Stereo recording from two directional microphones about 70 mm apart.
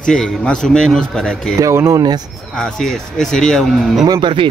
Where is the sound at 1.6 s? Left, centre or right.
Right.